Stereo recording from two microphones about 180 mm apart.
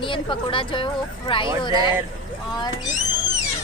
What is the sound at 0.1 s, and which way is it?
Speech, 30° left (ahead or behind).